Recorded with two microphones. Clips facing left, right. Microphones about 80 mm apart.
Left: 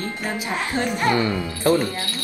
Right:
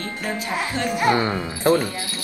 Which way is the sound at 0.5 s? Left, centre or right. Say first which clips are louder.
Even; centre.